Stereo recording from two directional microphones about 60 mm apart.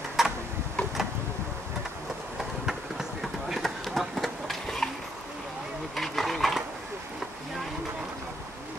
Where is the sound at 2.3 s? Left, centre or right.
Centre.